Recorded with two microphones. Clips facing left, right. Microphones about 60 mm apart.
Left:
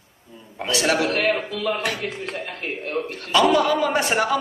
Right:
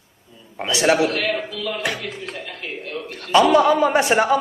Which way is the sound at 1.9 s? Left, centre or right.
Left.